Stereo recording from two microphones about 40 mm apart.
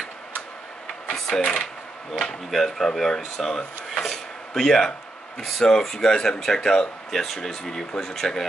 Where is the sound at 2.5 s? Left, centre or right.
Centre.